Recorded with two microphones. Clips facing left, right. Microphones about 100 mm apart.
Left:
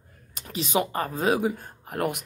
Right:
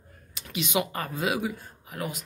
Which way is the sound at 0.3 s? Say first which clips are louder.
Left 2 dB; 40° left (ahead or behind).